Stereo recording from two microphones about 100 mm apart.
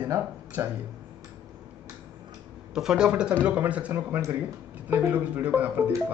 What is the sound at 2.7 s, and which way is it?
Speech, 5° right (ahead or behind).